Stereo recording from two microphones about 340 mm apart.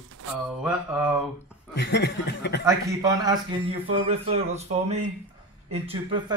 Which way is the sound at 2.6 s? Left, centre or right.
Centre.